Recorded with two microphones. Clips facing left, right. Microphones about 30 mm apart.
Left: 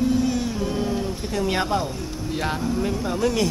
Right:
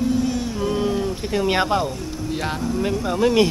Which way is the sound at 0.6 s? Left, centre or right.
Centre.